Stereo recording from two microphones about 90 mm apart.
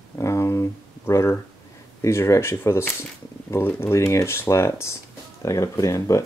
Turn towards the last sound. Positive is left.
turn(degrees=35)  # may be behind; listen again after turning